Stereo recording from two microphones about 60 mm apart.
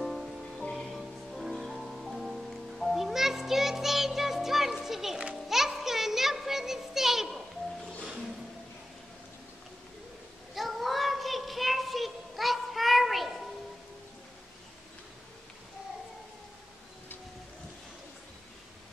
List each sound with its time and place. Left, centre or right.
0.0 s music: centre
10.5 s child singing: centre